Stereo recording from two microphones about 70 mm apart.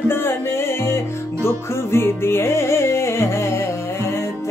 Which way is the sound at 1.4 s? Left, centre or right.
Left.